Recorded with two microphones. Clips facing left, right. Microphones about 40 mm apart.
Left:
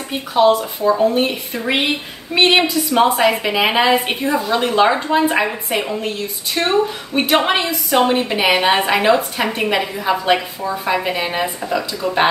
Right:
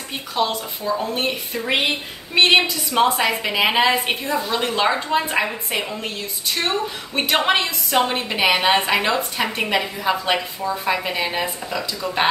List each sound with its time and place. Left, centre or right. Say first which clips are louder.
0.1 s a woman's voice: left 9 dB; centre
0.6 s speech: left 7 dB; left
1.0 s a woman's voice: left 8 dB; centre
2.3 s a woman's voice: left 2 dB; centre
7.2 s a woman's voice: left 3 dB; centre